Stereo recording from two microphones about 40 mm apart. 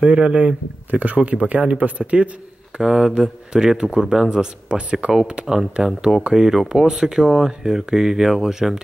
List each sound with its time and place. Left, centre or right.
0.0 s speech: right
2.8 s speech: centre